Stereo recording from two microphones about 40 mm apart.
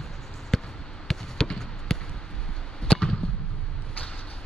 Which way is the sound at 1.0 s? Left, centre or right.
Centre.